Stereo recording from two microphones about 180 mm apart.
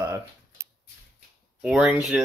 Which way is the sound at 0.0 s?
15° right (ahead or behind).